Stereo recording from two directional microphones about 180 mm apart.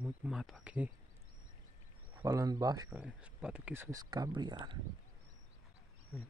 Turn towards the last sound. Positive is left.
turn(degrees=0)  # may be behind; listen again after turning